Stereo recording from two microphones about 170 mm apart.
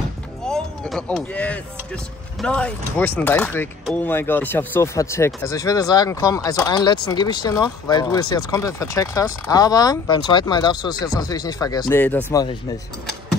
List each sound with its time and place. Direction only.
0.5 s speech: 5° left (ahead or behind)